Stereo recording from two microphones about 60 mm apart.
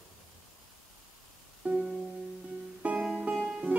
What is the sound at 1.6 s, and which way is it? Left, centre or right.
Music, centre.